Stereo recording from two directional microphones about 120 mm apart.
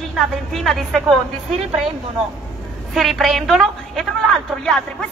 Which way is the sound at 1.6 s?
55° right (ahead or behind).